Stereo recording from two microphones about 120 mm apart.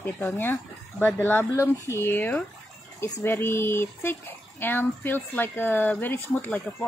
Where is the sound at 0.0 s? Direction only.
15° left (ahead or behind).